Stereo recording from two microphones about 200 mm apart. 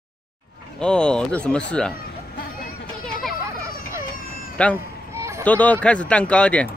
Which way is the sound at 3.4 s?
15° right (ahead or behind).